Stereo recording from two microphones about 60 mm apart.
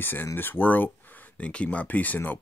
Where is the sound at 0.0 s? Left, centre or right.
Left.